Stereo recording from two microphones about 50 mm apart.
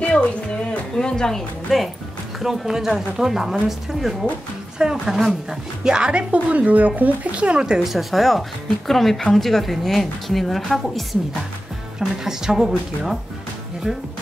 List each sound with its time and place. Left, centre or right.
0.7 s speech: centre
1.7 s a woman's voice: centre
6.3 s speech: right
7.8 s a woman's voice: centre
12.0 s speech: centre